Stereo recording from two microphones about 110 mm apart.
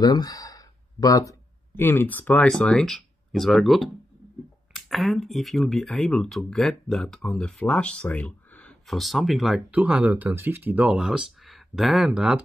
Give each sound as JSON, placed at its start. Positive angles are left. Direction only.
{"t": 0.0, "sound": "a sound", "side_deg": 35}
{"t": 1.8, "sound": "speech", "side_deg": 20}
{"t": 8.8, "sound": "speech", "side_deg": 0}
{"t": 9.7, "sound": "speech", "side_deg": -15}